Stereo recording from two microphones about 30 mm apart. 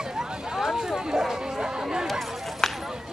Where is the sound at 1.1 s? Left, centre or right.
Centre.